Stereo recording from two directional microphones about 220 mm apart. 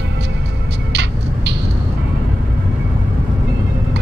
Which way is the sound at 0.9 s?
50° right (ahead or behind).